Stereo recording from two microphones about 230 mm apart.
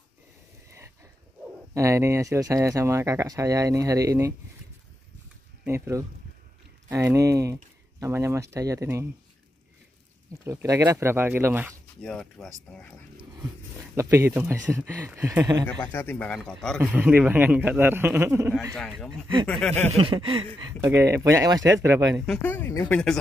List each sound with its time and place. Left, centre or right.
1.7 s speech: centre
5.6 s speech: centre
10.3 s speech: centre
12.0 s speech: centre
13.4 s speech: centre
15.6 s speech: centre
18.8 s speech: centre
19.9 s a sound: right
20.5 s speech: centre
22.2 s speech: centre